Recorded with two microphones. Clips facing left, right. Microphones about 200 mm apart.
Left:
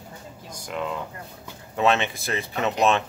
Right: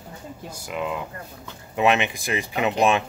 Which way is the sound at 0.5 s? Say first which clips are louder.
Right 1 dB; 5° right (ahead or behind).